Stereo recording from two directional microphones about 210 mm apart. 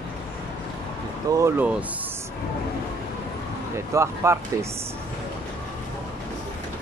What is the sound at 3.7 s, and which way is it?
Speech, 15° right (ahead or behind).